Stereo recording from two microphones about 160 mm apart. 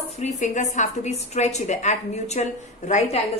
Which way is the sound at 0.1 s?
45° left (ahead or behind).